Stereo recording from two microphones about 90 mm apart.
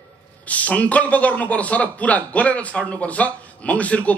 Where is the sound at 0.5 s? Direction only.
15° left (ahead or behind).